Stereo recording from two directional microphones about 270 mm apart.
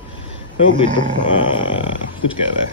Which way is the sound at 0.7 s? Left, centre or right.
Centre.